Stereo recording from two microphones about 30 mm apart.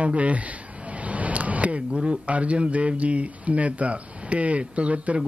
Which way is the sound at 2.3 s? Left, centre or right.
Right.